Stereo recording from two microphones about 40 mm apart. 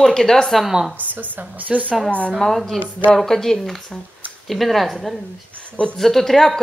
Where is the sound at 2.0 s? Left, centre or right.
Left.